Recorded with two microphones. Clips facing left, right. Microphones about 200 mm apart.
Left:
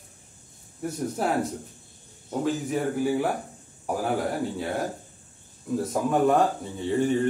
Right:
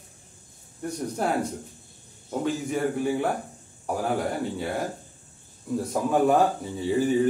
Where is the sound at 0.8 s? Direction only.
Centre (ahead or behind).